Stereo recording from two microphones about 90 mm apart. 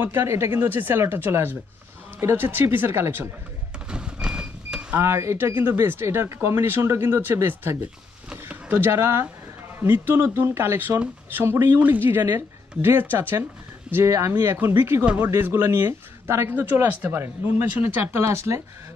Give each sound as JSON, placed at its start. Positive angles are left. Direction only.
{"t": 0.0, "sound": "speech", "side_deg": -25}
{"t": 3.9, "sound": "vehicle", "side_deg": -10}
{"t": 4.9, "sound": "speech", "side_deg": -30}
{"t": 8.3, "sound": "a sound", "side_deg": -15}
{"t": 8.7, "sound": "speech", "side_deg": -25}
{"t": 14.0, "sound": "speech", "side_deg": -35}
{"t": 18.1, "sound": "speech", "side_deg": -30}